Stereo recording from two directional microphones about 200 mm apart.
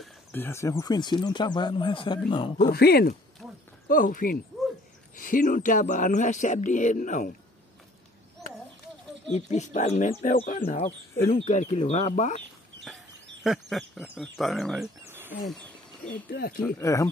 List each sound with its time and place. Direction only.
0.3 s speech: 10° left (ahead or behind)
2.7 s speech: 50° left (ahead or behind)
9.3 s speech: 35° left (ahead or behind)
12.8 s speech: centre (ahead or behind)
15.0 s wild animals: 10° right (ahead or behind)
15.4 s speech: centre (ahead or behind)
16.3 s speech: 45° left (ahead or behind)
16.8 s speech: 15° left (ahead or behind)